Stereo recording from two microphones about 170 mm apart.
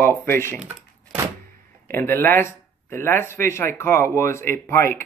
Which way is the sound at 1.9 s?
15° left (ahead or behind).